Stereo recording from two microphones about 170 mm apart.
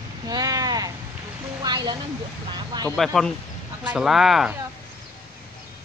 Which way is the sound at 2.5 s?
25° right (ahead or behind).